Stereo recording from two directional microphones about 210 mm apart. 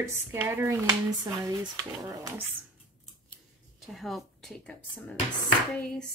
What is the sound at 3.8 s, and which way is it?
Speech, centre (ahead or behind).